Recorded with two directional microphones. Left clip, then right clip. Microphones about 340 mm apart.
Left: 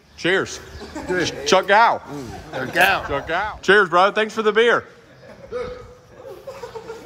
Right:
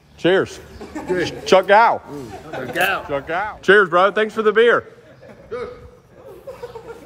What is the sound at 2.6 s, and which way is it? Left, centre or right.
Speech, left.